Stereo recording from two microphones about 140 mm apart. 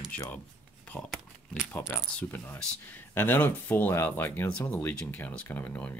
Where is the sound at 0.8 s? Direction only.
10° left (ahead or behind).